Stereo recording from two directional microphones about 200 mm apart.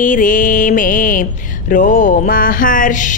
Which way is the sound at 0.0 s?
40° left (ahead or behind).